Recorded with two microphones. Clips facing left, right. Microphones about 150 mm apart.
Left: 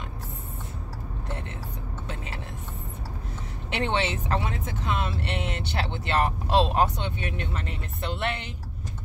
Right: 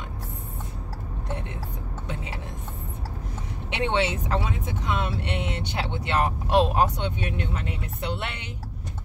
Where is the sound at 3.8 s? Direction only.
15° right (ahead or behind).